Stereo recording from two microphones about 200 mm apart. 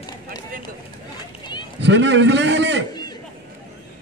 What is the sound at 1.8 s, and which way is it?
A man's voice, 65° right (ahead or behind).